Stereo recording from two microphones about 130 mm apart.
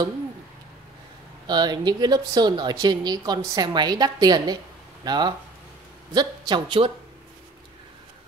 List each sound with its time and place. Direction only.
1.5 s speech: 35° right (ahead or behind)